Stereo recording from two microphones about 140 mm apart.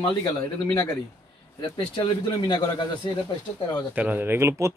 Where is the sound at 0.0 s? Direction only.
30° left (ahead or behind).